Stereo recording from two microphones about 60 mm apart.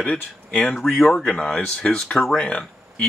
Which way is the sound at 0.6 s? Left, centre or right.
Centre.